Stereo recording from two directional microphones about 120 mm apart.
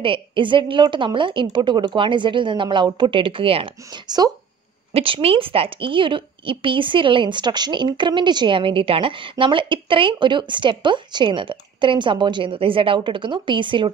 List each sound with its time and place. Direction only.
0.0 s a woman's voice: 45° right (ahead or behind)
4.9 s a woman's voice: 50° right (ahead or behind)